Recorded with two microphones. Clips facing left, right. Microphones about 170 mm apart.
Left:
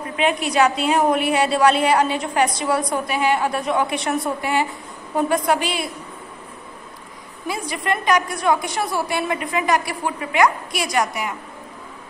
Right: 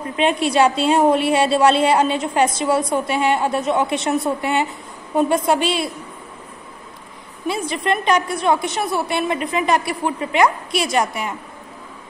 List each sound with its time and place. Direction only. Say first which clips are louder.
0.2 s a woman's voice: right 2 dB; 25° right (ahead or behind)
7.4 s a woman's voice: right 3 dB; 25° right (ahead or behind)